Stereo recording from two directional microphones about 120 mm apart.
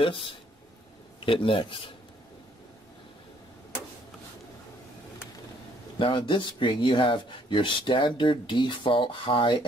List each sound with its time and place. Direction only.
0.0 s speech: 45° left (ahead or behind)
5.9 s speech: 45° left (ahead or behind)